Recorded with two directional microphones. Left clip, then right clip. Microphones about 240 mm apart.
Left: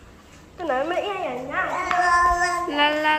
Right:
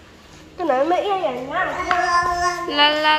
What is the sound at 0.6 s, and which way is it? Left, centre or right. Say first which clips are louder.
Speech: right 6 dB; right.